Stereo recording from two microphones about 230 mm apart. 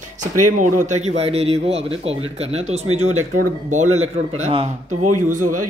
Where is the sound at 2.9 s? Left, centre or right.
Right.